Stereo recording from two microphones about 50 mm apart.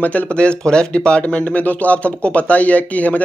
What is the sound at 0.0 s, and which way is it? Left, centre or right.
Speech, left.